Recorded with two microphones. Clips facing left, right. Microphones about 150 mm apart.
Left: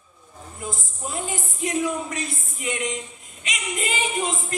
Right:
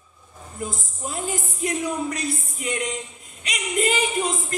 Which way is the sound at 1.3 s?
40° right (ahead or behind).